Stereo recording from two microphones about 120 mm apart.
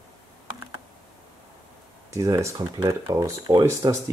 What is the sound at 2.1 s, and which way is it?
Speech, 25° right (ahead or behind).